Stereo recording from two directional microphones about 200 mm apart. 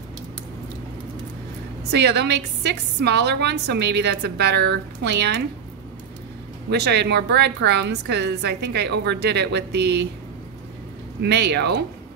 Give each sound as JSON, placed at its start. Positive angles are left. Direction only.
{"t": 1.9, "sound": "a woman's voice", "side_deg": -55}
{"t": 6.7, "sound": "a woman's voice", "side_deg": -55}
{"t": 11.1, "sound": "a woman's voice", "side_deg": -55}